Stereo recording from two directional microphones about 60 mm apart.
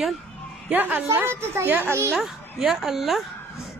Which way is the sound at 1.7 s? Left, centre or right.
Right.